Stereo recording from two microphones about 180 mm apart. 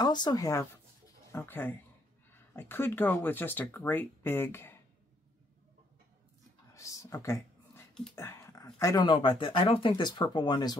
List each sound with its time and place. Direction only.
0.0 s speech: 25° left (ahead or behind)
6.7 s a sound: 15° left (ahead or behind)
8.7 s speech: 20° left (ahead or behind)